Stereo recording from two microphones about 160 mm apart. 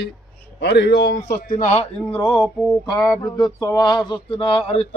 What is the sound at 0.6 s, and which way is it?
Speech, 90° left.